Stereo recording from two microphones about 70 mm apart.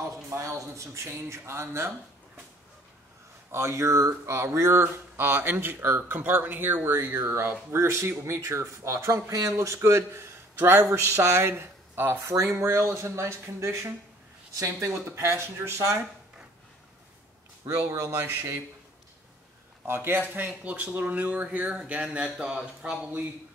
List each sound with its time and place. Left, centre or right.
0.4 s a man's voice: right
3.5 s a man's voice: right
10.8 s a man's voice: right
11.1 s speech: right
12.3 s speech: right
14.5 s speech: right
14.9 s speech: right
17.6 s speech: right
19.9 s speech: right; by 22.7 s centre